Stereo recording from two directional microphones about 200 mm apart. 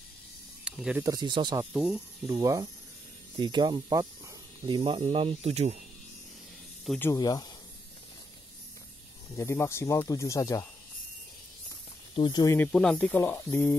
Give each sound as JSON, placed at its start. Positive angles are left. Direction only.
{"t": 0.7, "sound": "speech", "side_deg": -5}
{"t": 1.0, "sound": "speech", "side_deg": -20}
{"t": 1.6, "sound": "speech", "side_deg": -5}
{"t": 2.3, "sound": "speech", "side_deg": -20}
{"t": 6.9, "sound": "speech", "side_deg": 10}
{"t": 9.3, "sound": "speech", "side_deg": 15}
{"t": 12.2, "sound": "speech", "side_deg": 20}
{"t": 12.5, "sound": "speech", "side_deg": 5}